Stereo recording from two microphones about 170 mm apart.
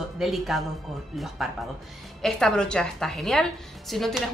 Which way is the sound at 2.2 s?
5° left (ahead or behind).